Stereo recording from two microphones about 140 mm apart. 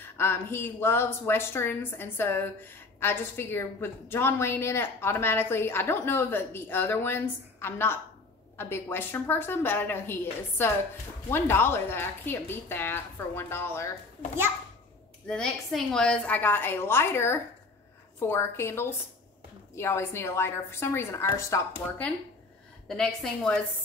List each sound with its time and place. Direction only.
0.0 s speech: 15° left (ahead or behind)
15.2 s a woman's voice: 5° left (ahead or behind); by 21.6 s 20° left (ahead or behind)
22.0 s a woman's voice: 10° left (ahead or behind)